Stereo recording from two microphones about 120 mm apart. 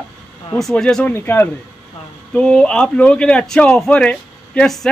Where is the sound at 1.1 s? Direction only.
15° left (ahead or behind).